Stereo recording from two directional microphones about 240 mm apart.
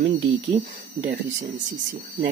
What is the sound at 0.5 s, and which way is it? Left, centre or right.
Speech, right.